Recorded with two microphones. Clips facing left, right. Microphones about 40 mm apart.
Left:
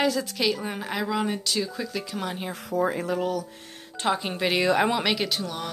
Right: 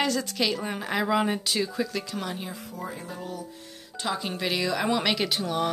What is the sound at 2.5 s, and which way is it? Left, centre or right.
Speech, left.